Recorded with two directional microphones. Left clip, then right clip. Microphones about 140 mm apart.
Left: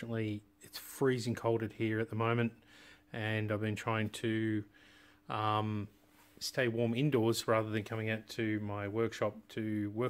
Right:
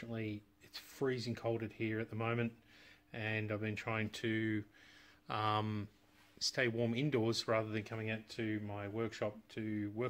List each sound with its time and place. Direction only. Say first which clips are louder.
0.0 s speech: left 5 dB; 45° left (ahead or behind)